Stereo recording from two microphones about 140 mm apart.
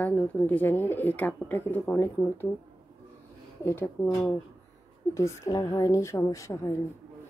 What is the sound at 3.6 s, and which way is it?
Speech, 15° left (ahead or behind).